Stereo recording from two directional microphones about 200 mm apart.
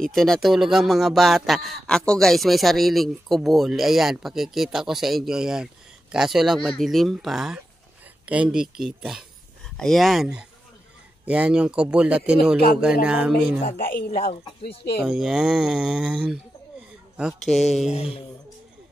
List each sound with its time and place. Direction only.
0.0 s speech: centre (ahead or behind)
13.8 s speech: 45° left (ahead or behind)
15.0 s speech: centre (ahead or behind)
17.8 s a sound: 30° left (ahead or behind)